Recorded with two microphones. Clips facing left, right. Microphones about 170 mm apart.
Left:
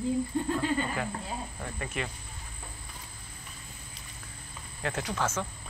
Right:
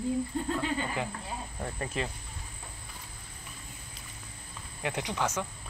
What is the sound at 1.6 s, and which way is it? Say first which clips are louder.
Speech: right 6 dB; 30° right (ahead or behind).